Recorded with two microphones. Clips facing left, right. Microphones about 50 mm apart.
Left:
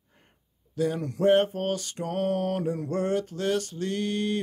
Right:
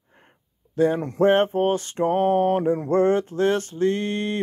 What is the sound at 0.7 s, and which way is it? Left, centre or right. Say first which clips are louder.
Speech: right 7 dB; right.